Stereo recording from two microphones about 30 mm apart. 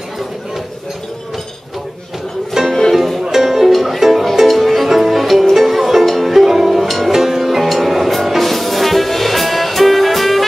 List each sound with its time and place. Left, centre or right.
2.6 s music: centre
3.2 s music: centre